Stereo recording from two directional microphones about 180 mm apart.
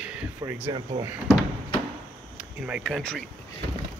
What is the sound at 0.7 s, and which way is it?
Speech, 25° right (ahead or behind).